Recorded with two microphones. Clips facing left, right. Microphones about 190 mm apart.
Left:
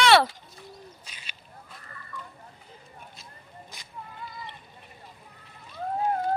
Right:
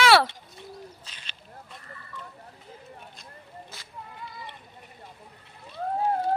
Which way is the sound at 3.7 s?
15° left (ahead or behind).